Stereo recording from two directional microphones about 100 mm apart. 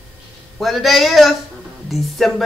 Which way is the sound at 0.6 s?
Centre (ahead or behind).